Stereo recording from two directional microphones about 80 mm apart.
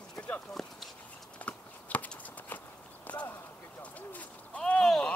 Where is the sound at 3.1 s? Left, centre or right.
Centre.